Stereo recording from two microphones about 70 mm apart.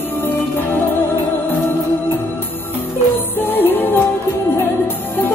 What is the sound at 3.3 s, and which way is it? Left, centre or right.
Music, left.